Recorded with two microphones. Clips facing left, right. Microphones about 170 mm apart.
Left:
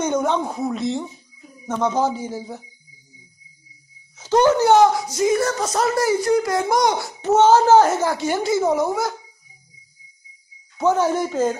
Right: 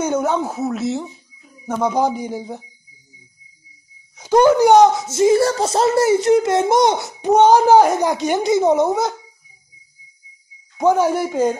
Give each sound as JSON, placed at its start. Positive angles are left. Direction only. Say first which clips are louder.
{"t": 0.0, "sound": "speech", "louder": "right 2 dB", "side_deg": -5}
{"t": 4.2, "sound": "a woman's voice", "louder": "right 4 dB", "side_deg": -10}
{"t": 10.8, "sound": "speech", "louder": "right 3 dB", "side_deg": -10}